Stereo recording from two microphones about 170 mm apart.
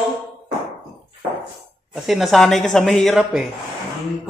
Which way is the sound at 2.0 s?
Centre (ahead or behind).